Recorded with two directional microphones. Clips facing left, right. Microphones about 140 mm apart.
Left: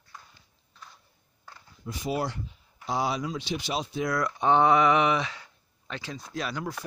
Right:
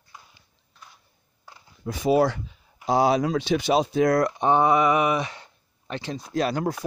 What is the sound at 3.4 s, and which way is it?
Speech, 55° right (ahead or behind).